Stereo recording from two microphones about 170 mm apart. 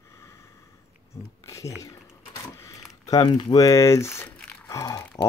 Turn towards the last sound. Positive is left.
turn(degrees=20)  # may be behind; listen again after turning